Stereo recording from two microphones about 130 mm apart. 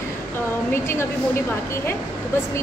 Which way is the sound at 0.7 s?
20° left (ahead or behind).